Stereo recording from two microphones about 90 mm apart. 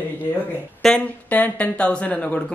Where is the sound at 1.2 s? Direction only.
15° left (ahead or behind).